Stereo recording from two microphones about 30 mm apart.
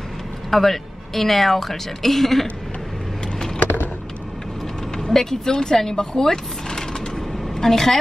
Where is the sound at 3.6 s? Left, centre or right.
Left.